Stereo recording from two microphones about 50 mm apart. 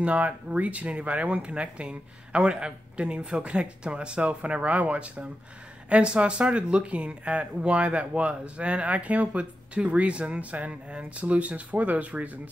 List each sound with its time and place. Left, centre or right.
0.0 s speech: right